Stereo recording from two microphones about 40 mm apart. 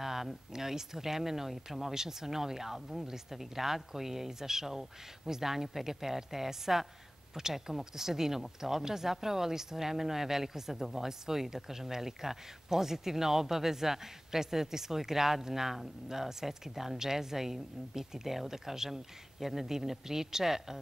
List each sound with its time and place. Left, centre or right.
0.0 s speech: centre